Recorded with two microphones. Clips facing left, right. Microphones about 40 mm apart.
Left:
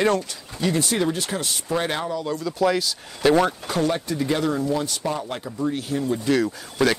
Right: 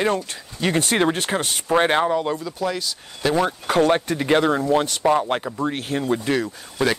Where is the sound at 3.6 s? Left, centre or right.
Right.